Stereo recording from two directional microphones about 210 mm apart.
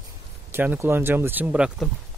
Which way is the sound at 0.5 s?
10° right (ahead or behind).